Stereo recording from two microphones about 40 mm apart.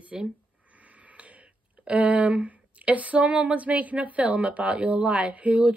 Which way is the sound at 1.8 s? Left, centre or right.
Right.